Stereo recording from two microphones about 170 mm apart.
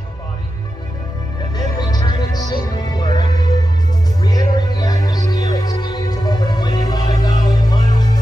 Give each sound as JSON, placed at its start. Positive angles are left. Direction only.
{"t": 1.6, "sound": "music", "side_deg": 25}